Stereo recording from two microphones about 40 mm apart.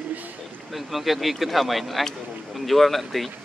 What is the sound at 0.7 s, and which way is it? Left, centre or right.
Speech, centre.